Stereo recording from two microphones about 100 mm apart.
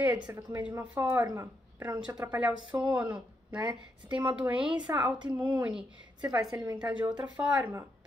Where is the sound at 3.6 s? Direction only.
45° right (ahead or behind).